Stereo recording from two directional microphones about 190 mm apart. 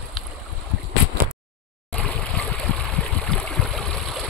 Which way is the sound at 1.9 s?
5° left (ahead or behind).